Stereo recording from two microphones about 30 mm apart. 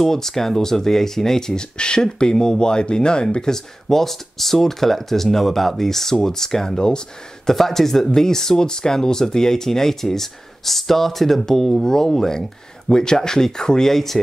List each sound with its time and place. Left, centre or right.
0.0 s speech: centre
1.5 s speech: left
7.5 s speech: centre
13.9 s speech: centre